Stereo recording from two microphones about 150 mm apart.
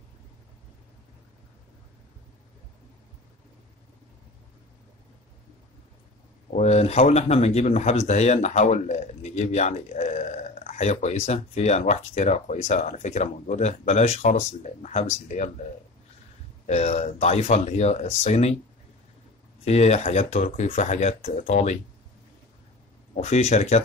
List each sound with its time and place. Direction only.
6.5 s speech: 50° left (ahead or behind)
16.6 s speech: 50° left (ahead or behind)
19.6 s speech: 45° left (ahead or behind)
23.1 s speech: 50° left (ahead or behind)